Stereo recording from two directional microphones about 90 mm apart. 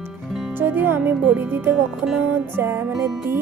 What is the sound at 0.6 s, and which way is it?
Speech, 25° right (ahead or behind).